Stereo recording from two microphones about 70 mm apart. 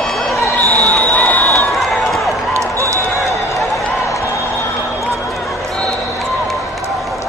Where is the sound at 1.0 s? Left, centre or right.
Left.